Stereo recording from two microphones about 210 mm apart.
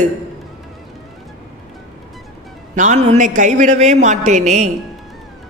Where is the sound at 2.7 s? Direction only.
35° right (ahead or behind).